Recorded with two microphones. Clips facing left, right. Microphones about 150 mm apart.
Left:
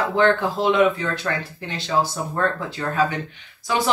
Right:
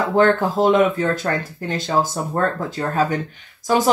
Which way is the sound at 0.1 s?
45° right (ahead or behind).